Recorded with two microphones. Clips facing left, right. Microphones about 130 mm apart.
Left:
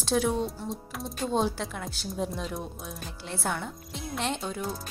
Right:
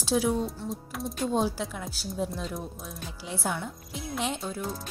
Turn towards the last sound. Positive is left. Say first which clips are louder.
# left 1 dB
turn(degrees=0)  # may be behind; listen again after turning